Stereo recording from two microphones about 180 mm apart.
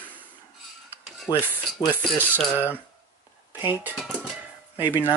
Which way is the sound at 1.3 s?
20° left (ahead or behind).